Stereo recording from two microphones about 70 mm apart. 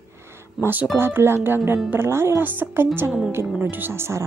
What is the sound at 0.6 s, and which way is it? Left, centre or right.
A woman's voice, right.